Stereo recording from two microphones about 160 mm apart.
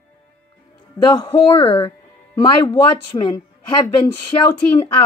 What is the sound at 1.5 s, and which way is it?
A woman's voice, 35° left (ahead or behind).